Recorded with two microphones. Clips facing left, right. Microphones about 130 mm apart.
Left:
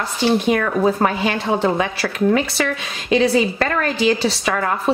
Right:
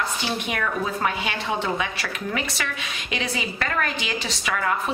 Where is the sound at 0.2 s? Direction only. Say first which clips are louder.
Left 10 dB; 35° left (ahead or behind).